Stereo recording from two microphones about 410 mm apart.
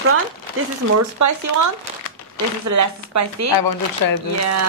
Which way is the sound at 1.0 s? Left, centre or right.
Right.